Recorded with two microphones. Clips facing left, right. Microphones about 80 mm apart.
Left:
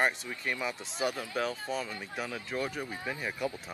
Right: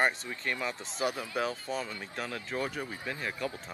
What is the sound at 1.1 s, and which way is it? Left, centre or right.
Speech, right.